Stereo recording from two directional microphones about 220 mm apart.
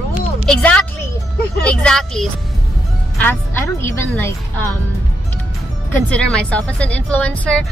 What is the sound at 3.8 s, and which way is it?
Speech, 10° left (ahead or behind).